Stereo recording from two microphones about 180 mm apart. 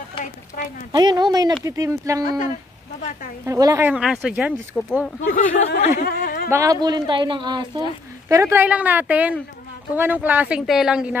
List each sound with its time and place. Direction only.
0.2 s speech: 45° left (ahead or behind)
0.9 s speech: 25° right (ahead or behind)
3.4 s speech: 20° right (ahead or behind)
3.9 s speech: 5° right (ahead or behind)
5.2 s speech: 45° left (ahead or behind)
5.9 s speech: 55° left (ahead or behind)
6.5 s speech: 20° right (ahead or behind)